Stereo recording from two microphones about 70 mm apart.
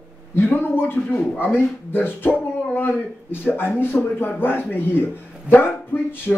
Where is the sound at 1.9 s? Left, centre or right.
Left.